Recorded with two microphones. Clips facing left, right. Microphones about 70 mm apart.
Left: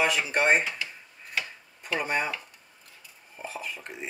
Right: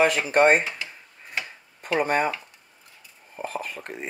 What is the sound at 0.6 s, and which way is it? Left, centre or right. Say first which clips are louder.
Drawer open or close: right 1 dB; centre.